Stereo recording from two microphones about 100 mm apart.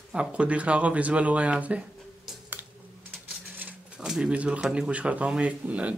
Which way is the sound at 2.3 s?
5° right (ahead or behind).